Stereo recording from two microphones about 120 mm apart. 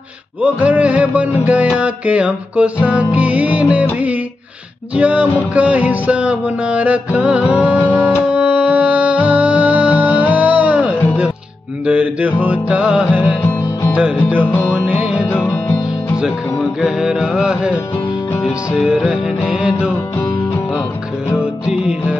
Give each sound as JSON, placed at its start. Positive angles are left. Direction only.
{"t": 0.4, "sound": "music", "side_deg": -10}
{"t": 4.9, "sound": "music", "side_deg": -10}
{"t": 13.4, "sound": "music", "side_deg": 15}
{"t": 15.2, "sound": "music", "side_deg": 15}
{"t": 16.2, "sound": "music", "side_deg": -5}
{"t": 21.6, "sound": "music", "side_deg": -5}